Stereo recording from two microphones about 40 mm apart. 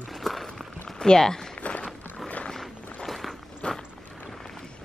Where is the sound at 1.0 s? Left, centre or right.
Centre.